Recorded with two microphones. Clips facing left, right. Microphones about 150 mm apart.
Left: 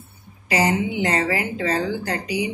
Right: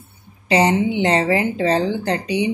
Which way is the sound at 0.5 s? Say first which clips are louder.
Right 4 dB; 25° right (ahead or behind).